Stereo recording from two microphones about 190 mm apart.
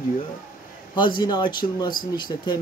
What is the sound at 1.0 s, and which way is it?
Speech, 25° left (ahead or behind).